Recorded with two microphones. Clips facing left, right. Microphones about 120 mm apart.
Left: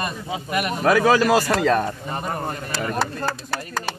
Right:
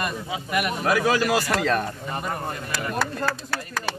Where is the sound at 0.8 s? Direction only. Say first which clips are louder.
Left 6 dB; 50° left (ahead or behind).